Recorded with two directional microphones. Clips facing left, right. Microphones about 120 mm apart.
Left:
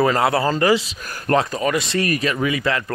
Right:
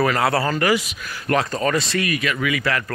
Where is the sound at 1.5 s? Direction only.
10° left (ahead or behind).